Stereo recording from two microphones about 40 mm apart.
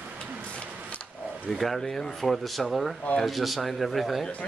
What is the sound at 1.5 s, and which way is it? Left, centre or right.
Speech, centre.